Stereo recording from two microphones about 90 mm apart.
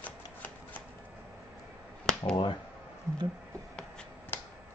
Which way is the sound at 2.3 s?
60° left (ahead or behind).